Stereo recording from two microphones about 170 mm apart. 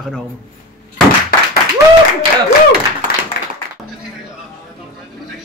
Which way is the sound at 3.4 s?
65° left (ahead or behind).